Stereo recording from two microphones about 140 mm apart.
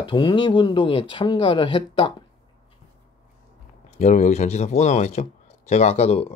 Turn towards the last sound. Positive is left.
turn(degrees=50)  # may be behind; listen again after turning